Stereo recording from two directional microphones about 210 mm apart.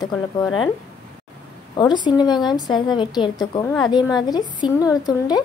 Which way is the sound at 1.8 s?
20° left (ahead or behind).